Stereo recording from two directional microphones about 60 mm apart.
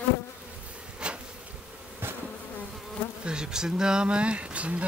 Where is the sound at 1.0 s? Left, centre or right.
Centre.